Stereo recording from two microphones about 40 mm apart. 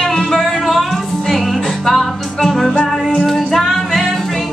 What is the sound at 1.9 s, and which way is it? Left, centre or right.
Music, centre.